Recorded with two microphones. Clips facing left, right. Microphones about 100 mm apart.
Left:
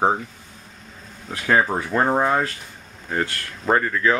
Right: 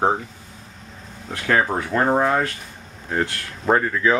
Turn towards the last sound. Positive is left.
turn(degrees=-5)  # may be behind; listen again after turning